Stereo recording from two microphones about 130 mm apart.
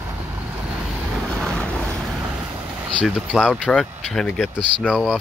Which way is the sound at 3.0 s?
5° right (ahead or behind).